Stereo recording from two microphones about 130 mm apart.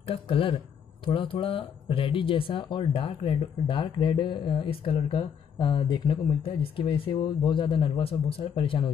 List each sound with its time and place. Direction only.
0.0 s speech: 45° left (ahead or behind)